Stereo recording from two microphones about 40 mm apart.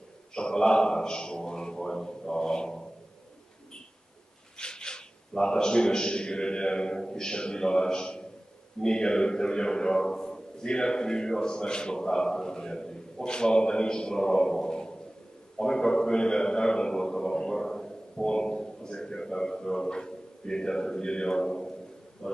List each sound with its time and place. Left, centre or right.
0.3 s a man's voice: centre
4.6 s a man's voice: left